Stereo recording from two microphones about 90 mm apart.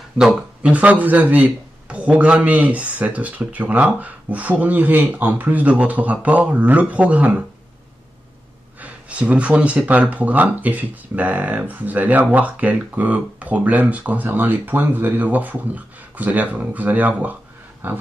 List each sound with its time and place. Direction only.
0.6 s speech: 15° right (ahead or behind)
8.8 s speech: 15° right (ahead or behind)